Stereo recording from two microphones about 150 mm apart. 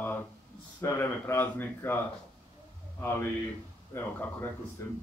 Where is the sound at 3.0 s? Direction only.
15° left (ahead or behind).